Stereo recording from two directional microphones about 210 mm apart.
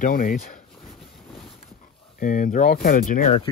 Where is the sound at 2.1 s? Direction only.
40° left (ahead or behind).